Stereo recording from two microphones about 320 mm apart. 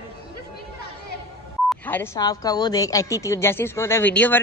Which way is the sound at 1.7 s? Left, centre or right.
Centre.